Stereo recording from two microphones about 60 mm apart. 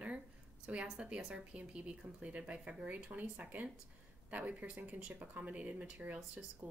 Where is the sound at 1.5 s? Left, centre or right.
Right.